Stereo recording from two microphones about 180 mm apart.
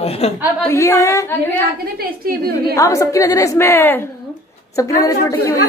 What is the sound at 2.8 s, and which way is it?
A woman's voice, 15° left (ahead or behind).